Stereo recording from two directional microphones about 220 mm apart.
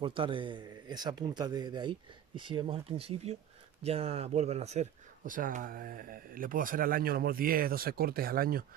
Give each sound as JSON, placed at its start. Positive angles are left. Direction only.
{"t": 0.0, "sound": "speech", "side_deg": -25}